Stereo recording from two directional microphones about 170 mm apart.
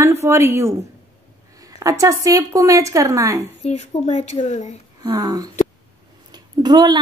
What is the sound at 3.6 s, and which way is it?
Speech, 40° left (ahead or behind).